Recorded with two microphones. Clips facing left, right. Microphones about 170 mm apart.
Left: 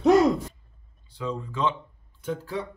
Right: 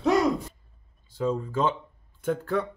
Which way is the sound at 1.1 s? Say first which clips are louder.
Right 5 dB; 45° right (ahead or behind).